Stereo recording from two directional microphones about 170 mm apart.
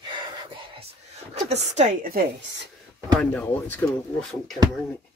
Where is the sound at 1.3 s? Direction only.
40° right (ahead or behind); by 2.6 s 80° right.